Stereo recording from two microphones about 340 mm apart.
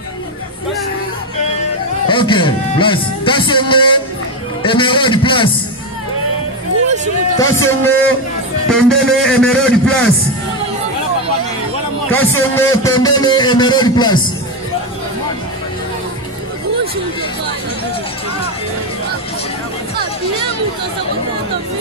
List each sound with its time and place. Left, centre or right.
2.0 s speech: centre
7.3 s a man's voice: centre
12.1 s speech: centre